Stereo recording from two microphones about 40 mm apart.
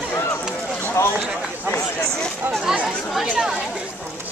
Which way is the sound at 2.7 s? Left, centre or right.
Centre.